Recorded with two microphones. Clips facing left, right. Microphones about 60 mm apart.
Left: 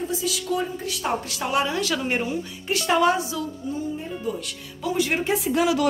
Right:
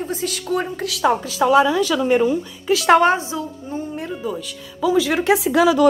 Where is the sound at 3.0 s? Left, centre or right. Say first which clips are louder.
Right 4 dB; right.